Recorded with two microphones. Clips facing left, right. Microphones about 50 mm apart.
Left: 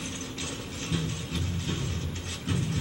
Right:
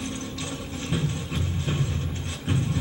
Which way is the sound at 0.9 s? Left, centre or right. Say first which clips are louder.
Right 4 dB; right.